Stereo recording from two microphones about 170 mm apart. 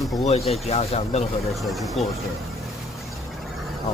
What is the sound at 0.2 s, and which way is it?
Speech, 40° left (ahead or behind).